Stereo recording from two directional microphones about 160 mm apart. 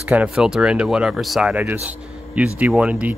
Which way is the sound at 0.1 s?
5° right (ahead or behind).